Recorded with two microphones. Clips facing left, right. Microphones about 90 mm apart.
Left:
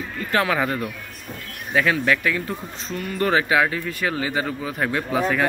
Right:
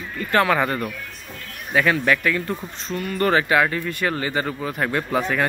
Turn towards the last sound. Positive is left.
turn(degrees=0)  # may be behind; listen again after turning